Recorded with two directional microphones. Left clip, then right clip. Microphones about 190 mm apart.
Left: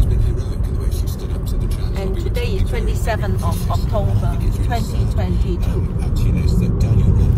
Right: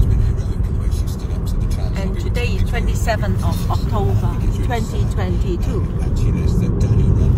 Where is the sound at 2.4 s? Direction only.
Centre (ahead or behind).